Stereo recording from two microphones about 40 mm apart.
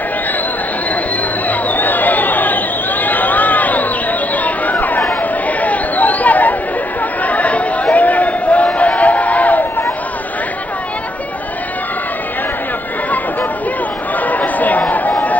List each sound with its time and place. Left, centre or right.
1.5 s chatter: left
14.2 s chatter: left